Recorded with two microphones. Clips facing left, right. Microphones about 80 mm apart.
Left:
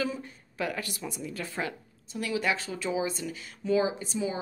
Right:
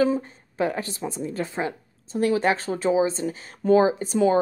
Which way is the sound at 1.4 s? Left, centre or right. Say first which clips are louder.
Right 3 dB; right.